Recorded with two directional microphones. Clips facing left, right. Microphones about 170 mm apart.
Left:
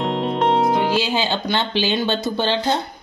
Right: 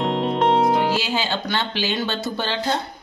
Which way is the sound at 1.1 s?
20° left (ahead or behind).